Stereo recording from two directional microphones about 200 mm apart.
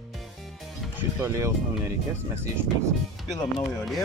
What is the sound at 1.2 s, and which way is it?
Speech, 15° right (ahead or behind).